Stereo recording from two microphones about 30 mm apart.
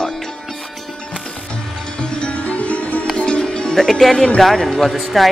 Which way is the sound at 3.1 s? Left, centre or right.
Left.